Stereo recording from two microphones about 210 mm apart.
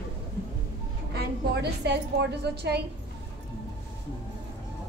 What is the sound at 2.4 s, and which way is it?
Speech, 50° right (ahead or behind).